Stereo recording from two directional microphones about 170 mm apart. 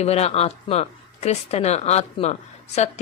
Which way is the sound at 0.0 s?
40° left (ahead or behind).